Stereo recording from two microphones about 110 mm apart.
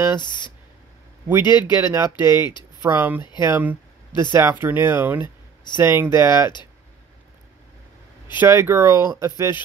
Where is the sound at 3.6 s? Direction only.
15° right (ahead or behind).